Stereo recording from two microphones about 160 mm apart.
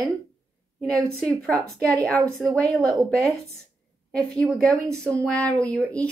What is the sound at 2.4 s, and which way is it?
Speech, 20° right (ahead or behind).